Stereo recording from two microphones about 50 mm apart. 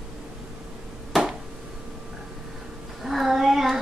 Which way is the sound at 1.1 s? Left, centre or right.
Centre.